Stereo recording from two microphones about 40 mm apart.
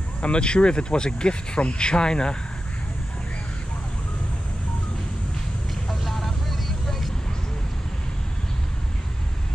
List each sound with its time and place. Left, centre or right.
0.2 s speech: left
6.0 s vehicle: centre